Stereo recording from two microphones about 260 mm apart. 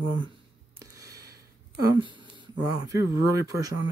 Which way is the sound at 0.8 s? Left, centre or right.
Centre.